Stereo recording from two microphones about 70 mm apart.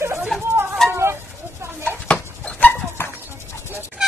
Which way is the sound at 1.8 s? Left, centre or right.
Centre.